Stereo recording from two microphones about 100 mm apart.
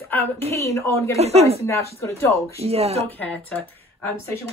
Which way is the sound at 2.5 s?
90° right.